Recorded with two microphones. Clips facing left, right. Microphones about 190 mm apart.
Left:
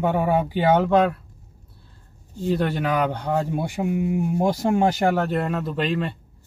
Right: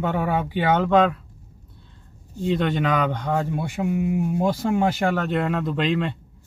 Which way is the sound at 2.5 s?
10° left (ahead or behind).